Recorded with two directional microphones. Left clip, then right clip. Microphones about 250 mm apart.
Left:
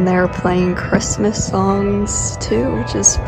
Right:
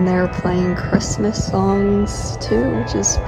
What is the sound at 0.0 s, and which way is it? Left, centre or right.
Speech, centre.